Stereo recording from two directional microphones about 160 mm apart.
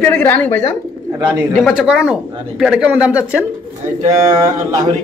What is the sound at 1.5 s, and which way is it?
Speech, centre (ahead or behind).